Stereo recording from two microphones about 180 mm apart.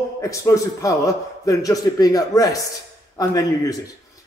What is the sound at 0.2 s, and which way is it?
A man's voice, 15° left (ahead or behind).